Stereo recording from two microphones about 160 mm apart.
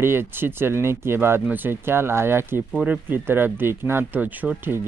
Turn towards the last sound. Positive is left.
turn(degrees=-15)  # may be behind; listen again after turning